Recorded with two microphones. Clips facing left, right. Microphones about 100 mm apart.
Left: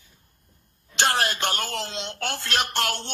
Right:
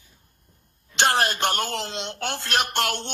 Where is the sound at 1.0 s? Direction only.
50° right (ahead or behind).